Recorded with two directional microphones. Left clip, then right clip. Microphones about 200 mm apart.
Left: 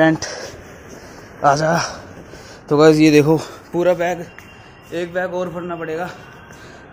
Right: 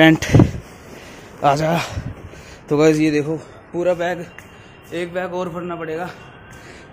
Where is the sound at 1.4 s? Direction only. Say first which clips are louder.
Left 2 dB; 15° right (ahead or behind).